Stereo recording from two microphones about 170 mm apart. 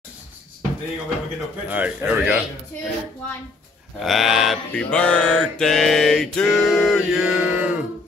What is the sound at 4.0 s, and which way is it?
Mantra, centre (ahead or behind).